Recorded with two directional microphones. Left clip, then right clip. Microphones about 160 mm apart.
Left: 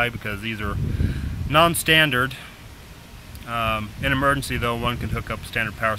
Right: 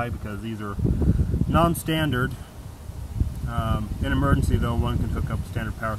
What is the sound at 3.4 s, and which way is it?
Speech, 20° left (ahead or behind).